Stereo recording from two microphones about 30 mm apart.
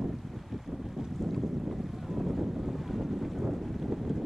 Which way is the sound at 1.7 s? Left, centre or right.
Centre.